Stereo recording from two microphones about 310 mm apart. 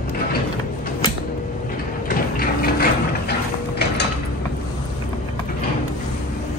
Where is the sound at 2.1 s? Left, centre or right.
Left.